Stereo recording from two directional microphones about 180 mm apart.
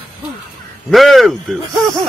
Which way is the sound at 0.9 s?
Centre (ahead or behind).